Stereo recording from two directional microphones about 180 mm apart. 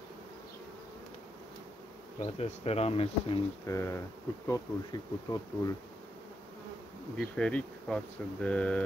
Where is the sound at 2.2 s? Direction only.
35° left (ahead or behind).